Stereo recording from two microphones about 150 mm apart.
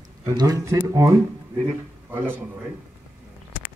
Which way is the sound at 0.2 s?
25° right (ahead or behind).